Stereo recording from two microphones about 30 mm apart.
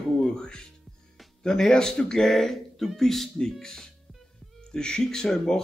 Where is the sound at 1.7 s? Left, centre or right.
Left.